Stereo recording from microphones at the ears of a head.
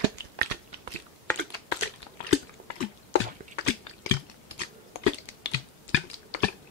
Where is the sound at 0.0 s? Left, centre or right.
Right.